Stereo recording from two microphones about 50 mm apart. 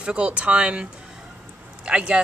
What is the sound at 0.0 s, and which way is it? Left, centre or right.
Speech, right.